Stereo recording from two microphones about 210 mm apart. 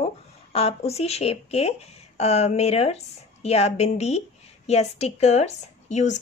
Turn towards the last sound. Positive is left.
turn(degrees=35)  # may be behind; listen again after turning